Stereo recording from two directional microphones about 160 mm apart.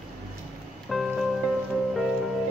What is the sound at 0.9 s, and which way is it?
Music, centre (ahead or behind).